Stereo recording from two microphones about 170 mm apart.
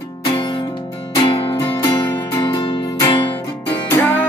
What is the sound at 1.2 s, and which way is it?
Music, 30° left (ahead or behind).